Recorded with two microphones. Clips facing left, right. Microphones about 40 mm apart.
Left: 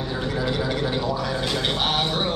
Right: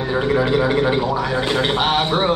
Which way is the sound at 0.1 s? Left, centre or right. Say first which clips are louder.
Right 10 dB; right.